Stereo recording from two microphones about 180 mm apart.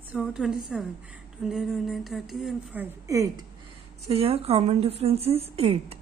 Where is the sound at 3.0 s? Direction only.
15° right (ahead or behind).